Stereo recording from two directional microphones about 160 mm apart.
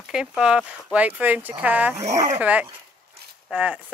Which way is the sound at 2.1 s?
20° right (ahead or behind).